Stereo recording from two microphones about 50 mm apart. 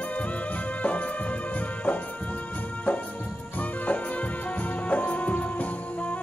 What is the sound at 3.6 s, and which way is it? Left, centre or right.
Music, left.